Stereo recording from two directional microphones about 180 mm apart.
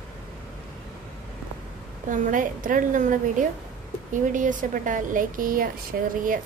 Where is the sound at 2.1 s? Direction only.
45° right (ahead or behind).